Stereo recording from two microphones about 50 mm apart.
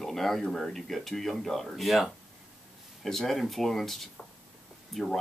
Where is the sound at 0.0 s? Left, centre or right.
Centre.